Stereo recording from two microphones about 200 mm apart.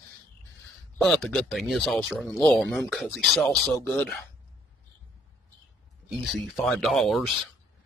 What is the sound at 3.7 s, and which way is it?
Speech, 15° left (ahead or behind).